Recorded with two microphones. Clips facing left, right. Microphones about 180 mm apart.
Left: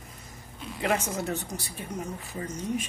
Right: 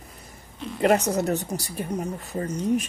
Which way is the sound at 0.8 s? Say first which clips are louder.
Right 8 dB; 45° right (ahead or behind).